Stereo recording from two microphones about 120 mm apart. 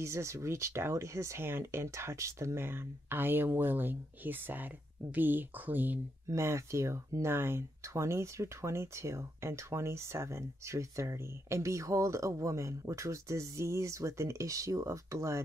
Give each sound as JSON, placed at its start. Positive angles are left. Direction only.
{"t": 0.0, "sound": "speech", "side_deg": -25}